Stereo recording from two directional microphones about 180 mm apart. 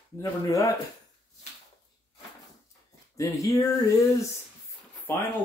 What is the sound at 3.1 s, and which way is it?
Speech, 20° left (ahead or behind).